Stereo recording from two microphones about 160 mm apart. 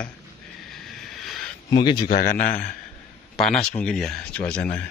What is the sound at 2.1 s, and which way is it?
Speech, 70° left (ahead or behind).